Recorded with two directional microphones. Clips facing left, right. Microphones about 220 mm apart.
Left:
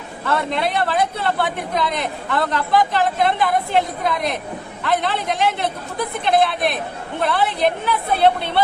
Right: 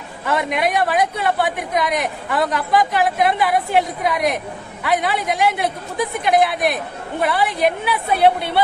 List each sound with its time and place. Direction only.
0.2 s a man's voice: 15° right (ahead or behind)